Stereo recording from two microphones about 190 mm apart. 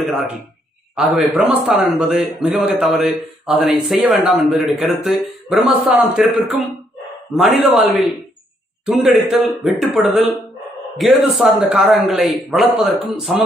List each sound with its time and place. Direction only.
1.1 s a man's voice: 5° right (ahead or behind)